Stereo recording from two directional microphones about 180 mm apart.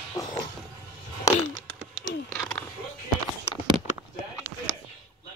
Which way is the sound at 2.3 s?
Centre (ahead or behind).